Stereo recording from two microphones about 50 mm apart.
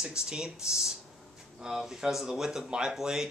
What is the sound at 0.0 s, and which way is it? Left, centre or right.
Speech, centre.